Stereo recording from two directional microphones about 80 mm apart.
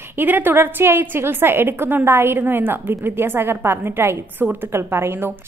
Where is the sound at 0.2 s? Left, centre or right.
Right.